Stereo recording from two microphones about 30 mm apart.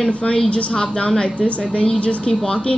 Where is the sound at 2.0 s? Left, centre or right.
Left.